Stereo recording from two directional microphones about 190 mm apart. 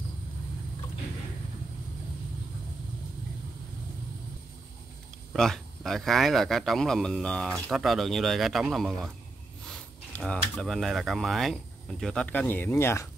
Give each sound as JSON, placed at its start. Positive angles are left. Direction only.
{"t": 5.3, "sound": "speech", "side_deg": 0}